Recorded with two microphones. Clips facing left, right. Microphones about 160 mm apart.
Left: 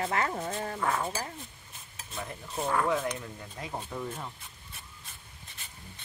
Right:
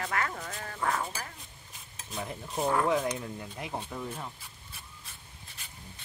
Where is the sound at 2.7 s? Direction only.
15° right (ahead or behind).